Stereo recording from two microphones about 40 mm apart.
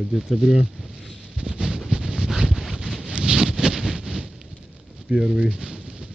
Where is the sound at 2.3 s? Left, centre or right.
Centre.